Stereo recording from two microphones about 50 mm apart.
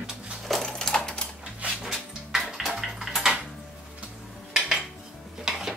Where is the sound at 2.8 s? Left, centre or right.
Centre.